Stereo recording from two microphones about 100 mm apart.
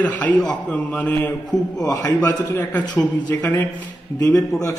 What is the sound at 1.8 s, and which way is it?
Speech, 35° left (ahead or behind).